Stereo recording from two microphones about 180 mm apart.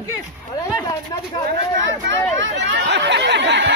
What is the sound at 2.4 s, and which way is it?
Chatter, 90° right.